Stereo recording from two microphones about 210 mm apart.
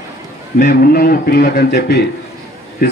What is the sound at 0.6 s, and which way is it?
Speech, 50° left (ahead or behind).